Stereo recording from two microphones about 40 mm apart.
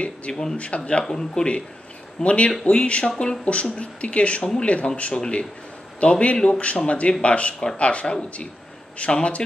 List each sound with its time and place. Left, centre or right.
0.3 s speech: centre
0.6 s speech: left
1.0 s speech: centre
2.2 s speech: left
5.9 s speech: left